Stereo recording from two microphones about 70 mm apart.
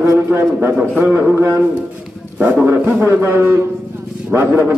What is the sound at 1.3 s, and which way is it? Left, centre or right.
Speech, right.